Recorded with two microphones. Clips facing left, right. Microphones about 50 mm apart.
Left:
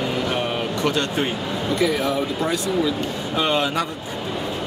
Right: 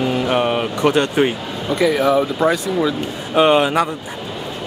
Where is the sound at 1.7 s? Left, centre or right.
Centre.